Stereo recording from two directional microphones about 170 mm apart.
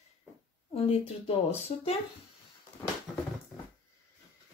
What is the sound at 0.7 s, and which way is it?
Speech, 35° left (ahead or behind).